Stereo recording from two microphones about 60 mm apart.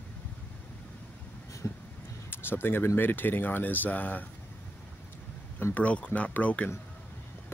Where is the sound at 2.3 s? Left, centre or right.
Left.